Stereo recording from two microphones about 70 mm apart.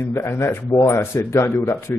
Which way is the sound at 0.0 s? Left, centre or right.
Left.